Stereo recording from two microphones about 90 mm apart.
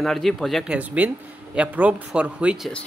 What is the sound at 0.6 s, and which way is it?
Speech, 15° right (ahead or behind).